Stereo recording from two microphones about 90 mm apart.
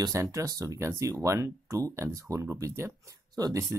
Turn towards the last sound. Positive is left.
turn(degrees=-40)  # may be behind; listen again after turning